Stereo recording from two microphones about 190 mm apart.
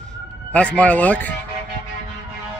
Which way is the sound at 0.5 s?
5° left (ahead or behind).